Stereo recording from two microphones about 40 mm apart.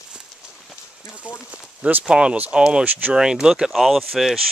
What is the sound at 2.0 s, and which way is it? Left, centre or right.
Speech, right.